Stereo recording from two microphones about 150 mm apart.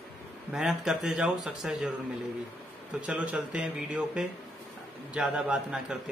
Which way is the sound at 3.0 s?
10° right (ahead or behind).